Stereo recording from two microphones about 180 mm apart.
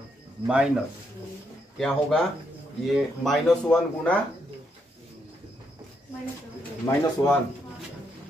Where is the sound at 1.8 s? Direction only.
5° left (ahead or behind).